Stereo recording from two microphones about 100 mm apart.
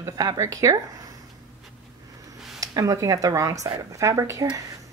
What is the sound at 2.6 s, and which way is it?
Speech, 35° right (ahead or behind).